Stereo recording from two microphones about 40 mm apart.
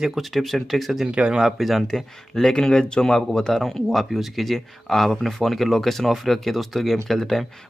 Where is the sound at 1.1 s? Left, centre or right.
Right.